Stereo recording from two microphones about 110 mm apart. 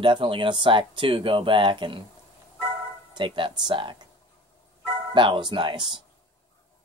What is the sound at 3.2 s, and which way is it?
Speech, 50° right (ahead or behind).